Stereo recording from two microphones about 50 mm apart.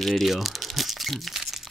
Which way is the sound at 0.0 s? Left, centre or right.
Centre.